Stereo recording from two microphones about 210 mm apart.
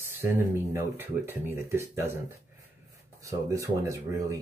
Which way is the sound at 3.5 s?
15° right (ahead or behind).